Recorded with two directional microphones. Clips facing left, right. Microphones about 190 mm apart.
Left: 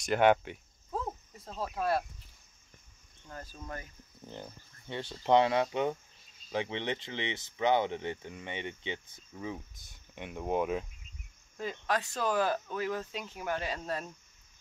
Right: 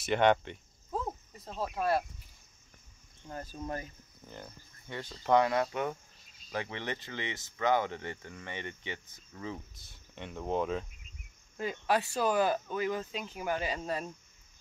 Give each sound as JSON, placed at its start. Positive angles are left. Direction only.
{"t": 0.0, "sound": "cricket", "side_deg": 5}
{"t": 3.3, "sound": "speech", "side_deg": -20}
{"t": 4.3, "sound": "speech", "side_deg": 25}
{"t": 11.5, "sound": "speech", "side_deg": -5}